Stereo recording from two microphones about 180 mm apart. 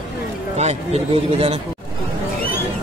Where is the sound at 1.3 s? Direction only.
35° right (ahead or behind).